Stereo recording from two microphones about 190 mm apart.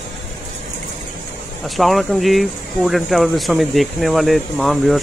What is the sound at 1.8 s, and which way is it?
Speech, centre (ahead or behind).